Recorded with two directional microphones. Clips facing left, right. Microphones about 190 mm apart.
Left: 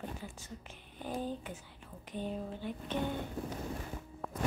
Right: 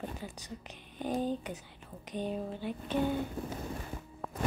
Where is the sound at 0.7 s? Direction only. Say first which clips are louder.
Right 7 dB; 20° right (ahead or behind).